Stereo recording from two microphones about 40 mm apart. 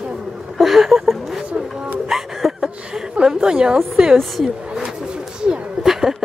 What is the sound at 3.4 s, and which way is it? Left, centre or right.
Speech, right.